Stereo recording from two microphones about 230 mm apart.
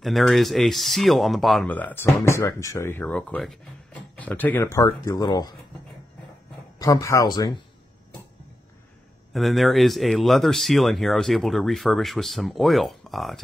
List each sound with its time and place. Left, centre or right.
0.0 s speech: centre
6.8 s speech: centre
9.3 s speech: centre